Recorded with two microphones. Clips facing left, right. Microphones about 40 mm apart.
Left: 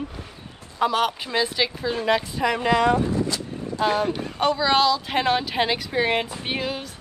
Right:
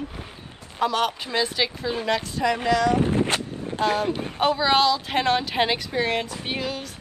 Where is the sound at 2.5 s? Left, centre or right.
Left.